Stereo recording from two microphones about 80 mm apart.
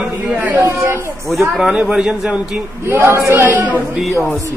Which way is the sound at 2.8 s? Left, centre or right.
Right.